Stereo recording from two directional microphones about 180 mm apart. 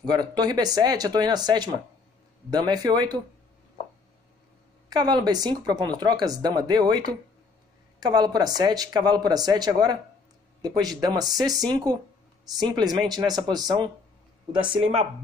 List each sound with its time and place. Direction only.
0.0 s speech: 25° right (ahead or behind)
4.8 s speech: 25° right (ahead or behind)